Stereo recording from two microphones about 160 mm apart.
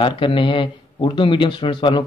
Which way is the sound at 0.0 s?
30° left (ahead or behind).